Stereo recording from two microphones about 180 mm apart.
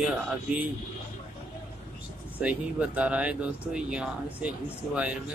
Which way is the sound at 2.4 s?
5° right (ahead or behind).